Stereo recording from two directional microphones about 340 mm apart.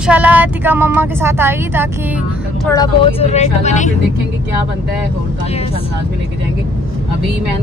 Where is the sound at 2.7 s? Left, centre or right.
Centre.